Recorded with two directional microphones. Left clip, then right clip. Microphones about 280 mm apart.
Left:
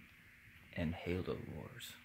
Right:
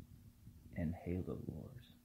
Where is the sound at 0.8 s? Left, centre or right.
Centre.